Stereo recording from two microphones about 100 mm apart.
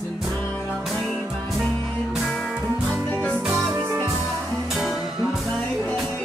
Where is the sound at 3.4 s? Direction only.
15° right (ahead or behind).